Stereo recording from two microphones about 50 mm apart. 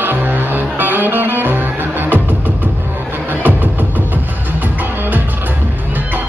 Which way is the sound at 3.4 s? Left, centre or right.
Right.